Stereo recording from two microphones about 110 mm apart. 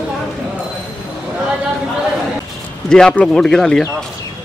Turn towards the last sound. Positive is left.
turn(degrees=5)  # may be behind; listen again after turning